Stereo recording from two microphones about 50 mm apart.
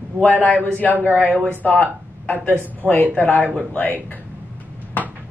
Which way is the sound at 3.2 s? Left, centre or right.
Left.